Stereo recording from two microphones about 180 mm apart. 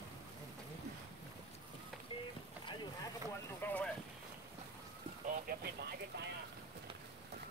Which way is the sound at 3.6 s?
10° left (ahead or behind).